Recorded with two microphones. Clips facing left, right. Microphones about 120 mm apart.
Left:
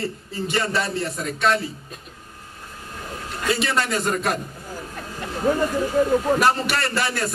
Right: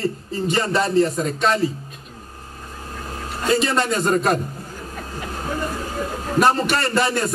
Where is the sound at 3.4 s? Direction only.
30° right (ahead or behind).